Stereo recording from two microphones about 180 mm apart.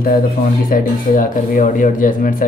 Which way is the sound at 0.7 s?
50° left (ahead or behind).